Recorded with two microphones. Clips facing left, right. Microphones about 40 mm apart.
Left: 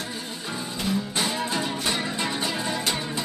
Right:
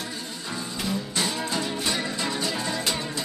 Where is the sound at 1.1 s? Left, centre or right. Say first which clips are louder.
Left 1 dB; centre.